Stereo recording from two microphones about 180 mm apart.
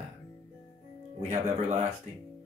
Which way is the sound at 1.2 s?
40° right (ahead or behind).